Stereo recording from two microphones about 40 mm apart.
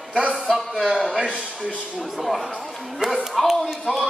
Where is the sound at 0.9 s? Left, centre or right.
Centre.